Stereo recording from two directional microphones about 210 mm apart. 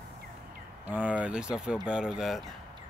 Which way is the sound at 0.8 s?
5° right (ahead or behind).